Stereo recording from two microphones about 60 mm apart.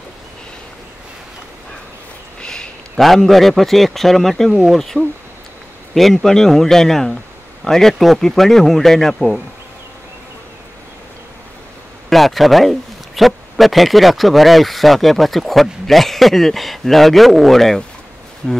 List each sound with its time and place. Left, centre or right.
2.4 s a sound: centre
3.0 s speech: centre
12.1 s speech: centre